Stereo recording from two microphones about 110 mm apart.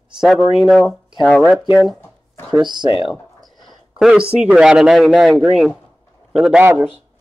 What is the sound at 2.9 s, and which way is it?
Speech, 55° left (ahead or behind).